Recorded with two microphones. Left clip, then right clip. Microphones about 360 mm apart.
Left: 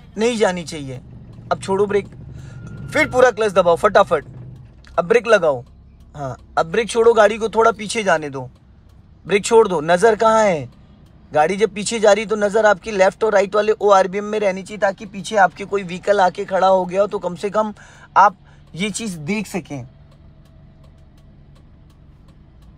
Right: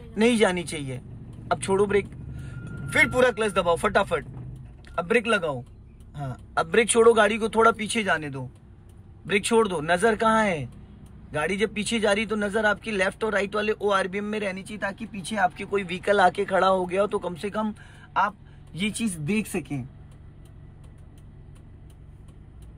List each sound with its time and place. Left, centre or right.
0.1 s speech: centre